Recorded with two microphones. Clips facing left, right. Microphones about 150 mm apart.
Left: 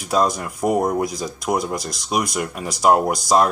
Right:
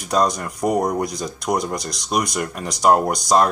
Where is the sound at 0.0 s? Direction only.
5° left (ahead or behind).